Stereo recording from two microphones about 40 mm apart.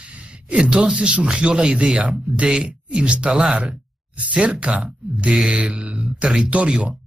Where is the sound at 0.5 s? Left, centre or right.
Right.